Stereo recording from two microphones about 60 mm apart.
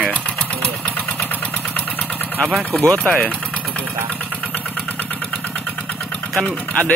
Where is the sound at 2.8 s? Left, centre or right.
Left.